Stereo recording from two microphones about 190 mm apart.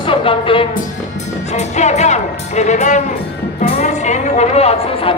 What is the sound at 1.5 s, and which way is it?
Speech, 35° left (ahead or behind).